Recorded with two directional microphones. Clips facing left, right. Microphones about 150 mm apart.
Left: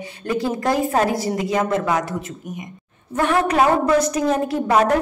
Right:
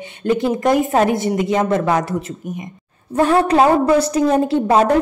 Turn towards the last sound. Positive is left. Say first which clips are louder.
# right 4 dB
turn(degrees=-30)  # may be behind; listen again after turning